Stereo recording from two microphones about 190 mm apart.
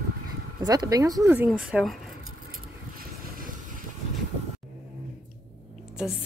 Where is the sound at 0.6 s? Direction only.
20° right (ahead or behind).